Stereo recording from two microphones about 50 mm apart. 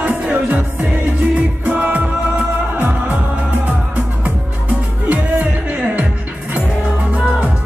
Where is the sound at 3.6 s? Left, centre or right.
Right.